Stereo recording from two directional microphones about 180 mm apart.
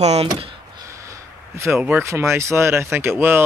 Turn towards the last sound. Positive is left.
turn(degrees=-10)  # may be behind; listen again after turning